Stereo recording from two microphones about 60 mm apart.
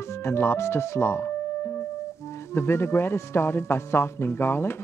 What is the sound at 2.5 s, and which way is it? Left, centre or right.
Speech, left.